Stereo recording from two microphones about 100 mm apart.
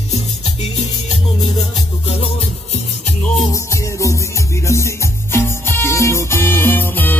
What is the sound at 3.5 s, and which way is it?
Music, 30° left (ahead or behind).